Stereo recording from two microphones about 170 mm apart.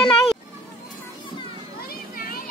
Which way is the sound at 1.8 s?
60° left (ahead or behind).